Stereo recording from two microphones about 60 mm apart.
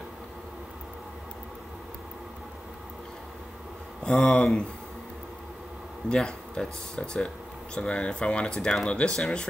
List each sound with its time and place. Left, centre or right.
4.0 s speech: centre
6.0 s speech: centre